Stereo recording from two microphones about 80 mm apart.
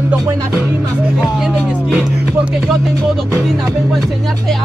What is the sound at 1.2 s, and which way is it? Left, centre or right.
Music, centre.